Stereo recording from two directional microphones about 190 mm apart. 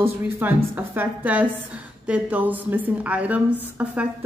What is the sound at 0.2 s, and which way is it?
A woman's voice, 10° right (ahead or behind).